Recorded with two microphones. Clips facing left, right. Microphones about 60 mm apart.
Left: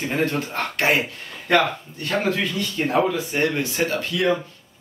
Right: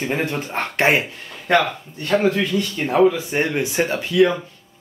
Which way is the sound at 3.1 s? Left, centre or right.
Centre.